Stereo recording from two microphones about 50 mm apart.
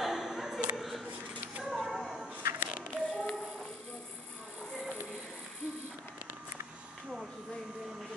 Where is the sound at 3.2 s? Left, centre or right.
Centre.